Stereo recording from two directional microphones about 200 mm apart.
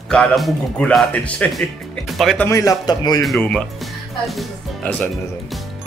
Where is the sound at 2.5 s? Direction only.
15° left (ahead or behind).